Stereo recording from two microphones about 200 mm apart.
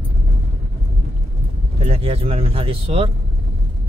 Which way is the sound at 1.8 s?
30° right (ahead or behind).